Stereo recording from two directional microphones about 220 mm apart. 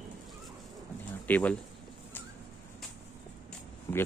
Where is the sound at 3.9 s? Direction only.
15° left (ahead or behind).